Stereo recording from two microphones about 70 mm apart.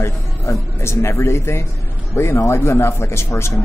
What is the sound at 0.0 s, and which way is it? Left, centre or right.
Speech, left.